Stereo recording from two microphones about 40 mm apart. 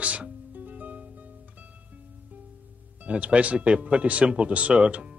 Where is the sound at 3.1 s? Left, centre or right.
Right.